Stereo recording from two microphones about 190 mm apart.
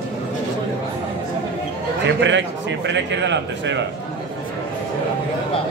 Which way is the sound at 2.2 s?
70° right (ahead or behind).